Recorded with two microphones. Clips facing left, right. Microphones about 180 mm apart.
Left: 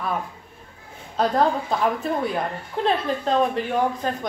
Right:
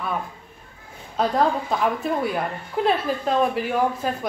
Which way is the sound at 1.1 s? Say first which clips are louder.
Even; centre (ahead or behind).